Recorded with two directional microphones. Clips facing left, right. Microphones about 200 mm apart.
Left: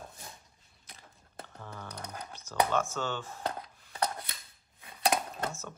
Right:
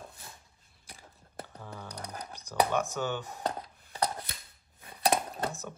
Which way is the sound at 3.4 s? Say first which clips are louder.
Right 2 dB; 35° right (ahead or behind).